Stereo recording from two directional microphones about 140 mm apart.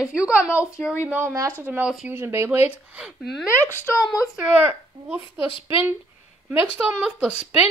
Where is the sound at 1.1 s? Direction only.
20° right (ahead or behind); by 3.4 s centre (ahead or behind).